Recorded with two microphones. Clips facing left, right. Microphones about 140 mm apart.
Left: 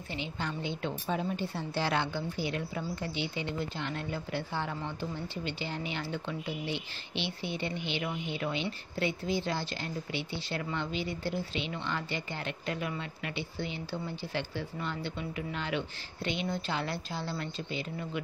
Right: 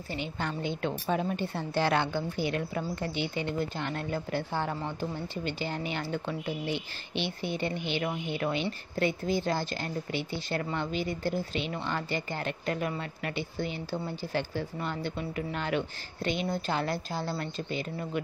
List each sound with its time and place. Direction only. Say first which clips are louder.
0.1 s a woman's voice: right 3 dB; 50° right (ahead or behind)